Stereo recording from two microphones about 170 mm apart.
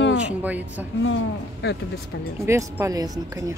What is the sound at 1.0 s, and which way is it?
Speech, 90° left.